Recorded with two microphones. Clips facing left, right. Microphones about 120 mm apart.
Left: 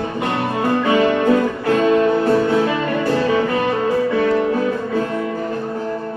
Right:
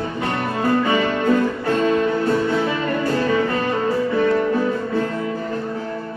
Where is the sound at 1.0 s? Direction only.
10° left (ahead or behind).